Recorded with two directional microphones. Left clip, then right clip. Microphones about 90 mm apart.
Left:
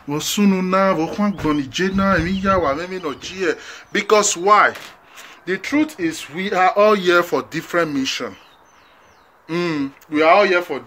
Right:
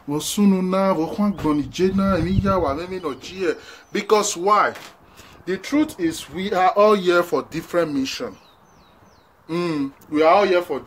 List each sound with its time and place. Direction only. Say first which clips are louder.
0.1 s speech: left 2 dB; 20° right (ahead or behind)
5.6 s speech: left 1 dB; 45° right (ahead or behind)
7.0 s speech: left 2 dB; 15° right (ahead or behind)
9.5 s speech: left 2 dB; 10° right (ahead or behind)
10.1 s speech: left 2 dB; 30° right (ahead or behind)